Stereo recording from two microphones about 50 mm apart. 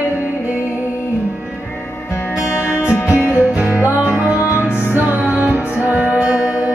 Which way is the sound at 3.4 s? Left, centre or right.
Right.